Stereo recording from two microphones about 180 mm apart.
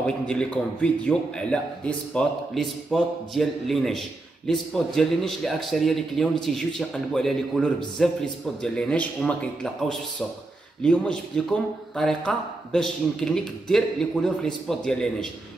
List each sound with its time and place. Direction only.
0.0 s a man's voice: 5° left (ahead or behind)